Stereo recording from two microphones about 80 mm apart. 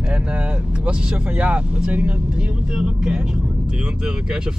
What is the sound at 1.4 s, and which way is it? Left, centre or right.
Vehicle, centre.